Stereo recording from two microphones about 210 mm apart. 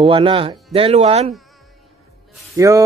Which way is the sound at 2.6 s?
15° right (ahead or behind).